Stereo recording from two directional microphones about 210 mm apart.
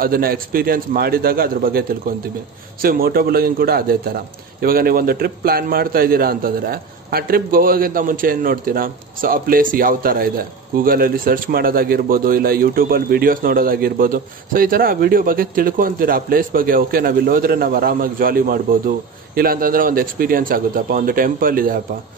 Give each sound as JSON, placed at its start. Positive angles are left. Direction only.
{"t": 0.0, "sound": "a man's voice", "side_deg": -45}